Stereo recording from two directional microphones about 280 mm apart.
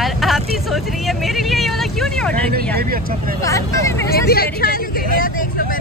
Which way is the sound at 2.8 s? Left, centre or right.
Right.